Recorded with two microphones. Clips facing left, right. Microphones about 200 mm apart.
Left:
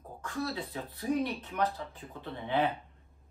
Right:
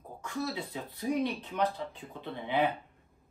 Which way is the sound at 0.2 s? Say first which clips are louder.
Even; 15° right (ahead or behind).